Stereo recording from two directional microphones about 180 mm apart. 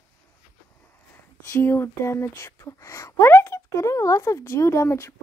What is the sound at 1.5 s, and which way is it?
Speech, 15° left (ahead or behind).